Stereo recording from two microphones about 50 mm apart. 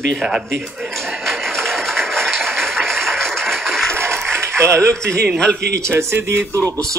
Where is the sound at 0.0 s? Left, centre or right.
Centre.